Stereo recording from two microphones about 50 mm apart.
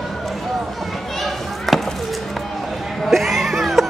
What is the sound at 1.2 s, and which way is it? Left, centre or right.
Chop, centre.